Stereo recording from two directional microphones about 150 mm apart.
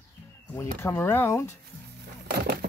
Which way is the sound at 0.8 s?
15° left (ahead or behind).